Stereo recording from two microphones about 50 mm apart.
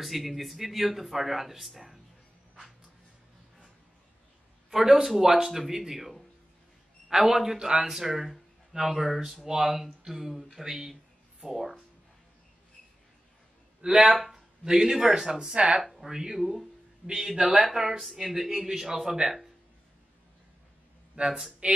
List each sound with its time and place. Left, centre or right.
0.0 s speech: centre
4.6 s speech: centre
14.0 s speech: centre
15.8 s a sound: centre
16.1 s a man's voice: centre
21.3 s speech: centre